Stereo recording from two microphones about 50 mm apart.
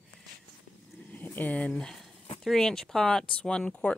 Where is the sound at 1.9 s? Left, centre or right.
Centre.